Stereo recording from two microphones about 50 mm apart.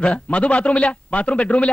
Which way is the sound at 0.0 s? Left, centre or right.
Left.